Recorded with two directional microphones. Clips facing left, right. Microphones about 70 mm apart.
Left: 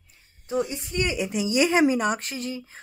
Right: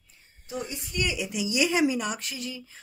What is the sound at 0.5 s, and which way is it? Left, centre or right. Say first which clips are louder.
Speech: left 8 dB; left.